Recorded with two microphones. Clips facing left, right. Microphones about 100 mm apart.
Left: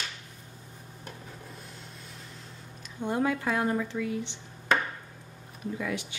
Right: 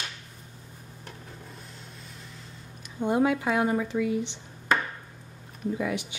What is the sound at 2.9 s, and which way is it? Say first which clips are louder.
Speech: right 4 dB; 15° right (ahead or behind).